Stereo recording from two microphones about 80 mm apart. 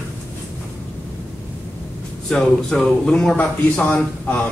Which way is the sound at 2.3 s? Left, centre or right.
Centre.